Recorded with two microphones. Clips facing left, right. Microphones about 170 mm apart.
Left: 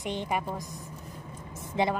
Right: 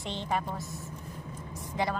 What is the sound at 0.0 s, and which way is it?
Speech, 15° left (ahead or behind).